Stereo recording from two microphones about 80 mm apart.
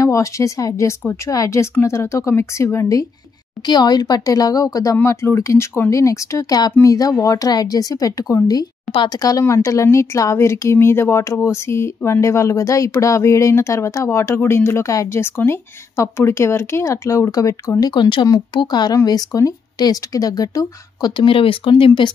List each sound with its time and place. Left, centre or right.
0.0 s speech: left
3.6 s speech: left
5.0 s speech: left
8.9 s speech: left
9.4 s speech: left
17.9 s speech: left
19.0 s speech: left
21.2 s speech: left